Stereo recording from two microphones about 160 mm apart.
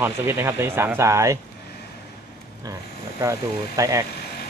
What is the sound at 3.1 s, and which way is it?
Speech, 20° right (ahead or behind).